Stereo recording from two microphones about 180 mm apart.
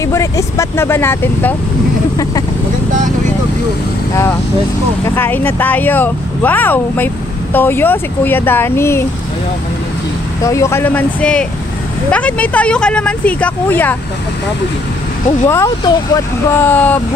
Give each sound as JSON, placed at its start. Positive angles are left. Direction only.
{"t": 0.0, "sound": "speech", "side_deg": 15}
{"t": 4.1, "sound": "speech", "side_deg": 15}
{"t": 10.4, "sound": "speech", "side_deg": 15}
{"t": 15.4, "sound": "speech", "side_deg": 15}